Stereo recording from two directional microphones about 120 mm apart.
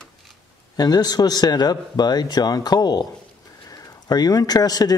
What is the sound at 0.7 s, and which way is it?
Speech, 35° left (ahead or behind).